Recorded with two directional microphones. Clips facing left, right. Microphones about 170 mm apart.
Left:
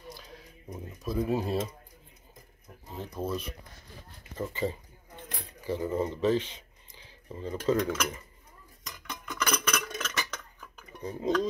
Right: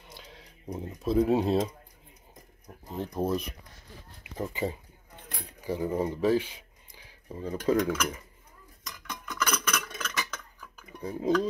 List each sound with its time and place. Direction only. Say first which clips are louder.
0.7 s speech: right 6 dB; 25° right (ahead or behind)
2.6 s speech: right 5 dB; 15° right (ahead or behind)
8.8 s dishes: even; 10° left (ahead or behind)
11.0 s speech: right 2 dB; 10° right (ahead or behind)